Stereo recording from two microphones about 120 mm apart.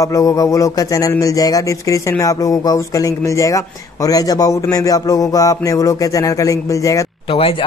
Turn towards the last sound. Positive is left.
turn(degrees=50)  # may be behind; listen again after turning